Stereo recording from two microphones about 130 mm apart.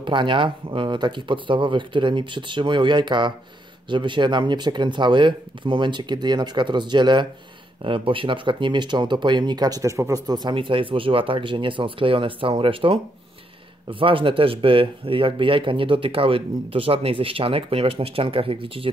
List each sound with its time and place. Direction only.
0.0 s speech: 40° right (ahead or behind)